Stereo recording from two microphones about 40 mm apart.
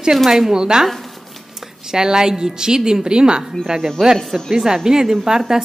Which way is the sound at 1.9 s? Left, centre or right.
Centre.